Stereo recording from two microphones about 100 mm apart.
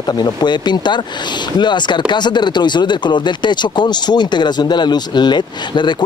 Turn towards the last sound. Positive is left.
turn(degrees=50)  # may be behind; listen again after turning